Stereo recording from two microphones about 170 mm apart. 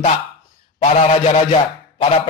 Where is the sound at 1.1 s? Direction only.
35° left (ahead or behind).